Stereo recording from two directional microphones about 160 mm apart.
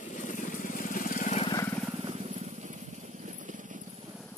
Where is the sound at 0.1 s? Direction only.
50° left (ahead or behind).